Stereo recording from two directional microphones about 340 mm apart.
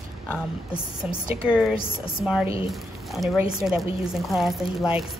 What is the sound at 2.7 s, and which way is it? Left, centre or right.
A woman's voice, centre.